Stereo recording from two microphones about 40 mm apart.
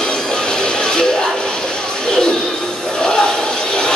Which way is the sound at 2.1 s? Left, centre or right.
Left.